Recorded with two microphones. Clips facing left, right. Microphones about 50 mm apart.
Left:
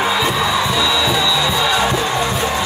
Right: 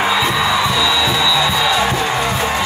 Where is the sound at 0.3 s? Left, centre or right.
Centre.